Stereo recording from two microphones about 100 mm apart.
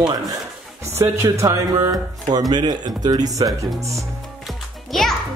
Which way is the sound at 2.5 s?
45° right (ahead or behind).